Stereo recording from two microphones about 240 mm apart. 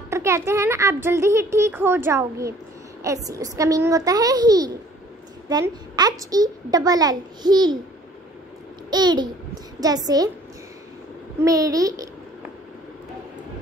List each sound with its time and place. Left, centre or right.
0.1 s a child's voice: centre
8.9 s a child's voice: centre
11.4 s a child's voice: centre